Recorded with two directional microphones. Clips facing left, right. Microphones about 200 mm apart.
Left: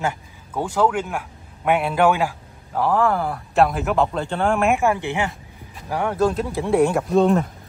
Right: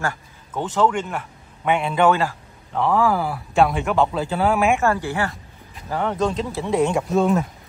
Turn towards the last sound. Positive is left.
turn(degrees=35)  # may be behind; listen again after turning